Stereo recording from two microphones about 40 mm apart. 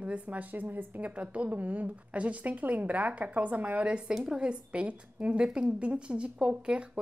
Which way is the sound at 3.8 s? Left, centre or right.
Right.